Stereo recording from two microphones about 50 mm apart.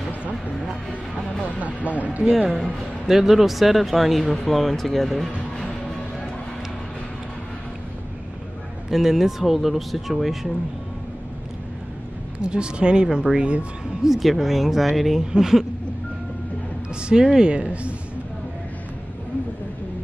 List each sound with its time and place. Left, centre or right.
1.9 s speech: right
2.2 s speech: centre
2.5 s a man's voice: centre
3.1 s speech: centre
8.9 s speech: centre
12.4 s a woman's voice: centre
14.0 s speech: centre
16.9 s a woman's voice: centre